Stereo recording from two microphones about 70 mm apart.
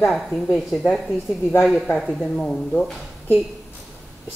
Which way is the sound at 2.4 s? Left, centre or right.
Centre.